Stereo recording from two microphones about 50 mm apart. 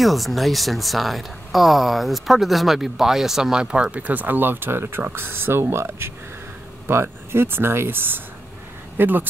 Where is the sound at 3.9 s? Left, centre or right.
Right.